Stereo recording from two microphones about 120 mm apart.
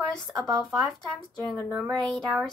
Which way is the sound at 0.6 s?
Centre (ahead or behind).